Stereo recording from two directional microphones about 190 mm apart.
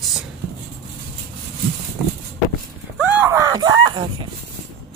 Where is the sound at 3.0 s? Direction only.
10° right (ahead or behind).